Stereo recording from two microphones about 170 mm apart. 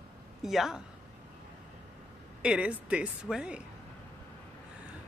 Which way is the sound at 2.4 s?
5° right (ahead or behind).